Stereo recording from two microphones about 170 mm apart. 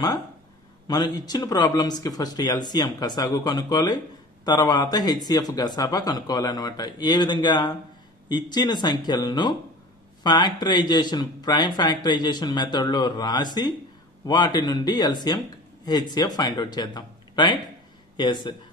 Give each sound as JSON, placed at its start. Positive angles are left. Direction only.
{"t": 0.8, "sound": "speech", "side_deg": 20}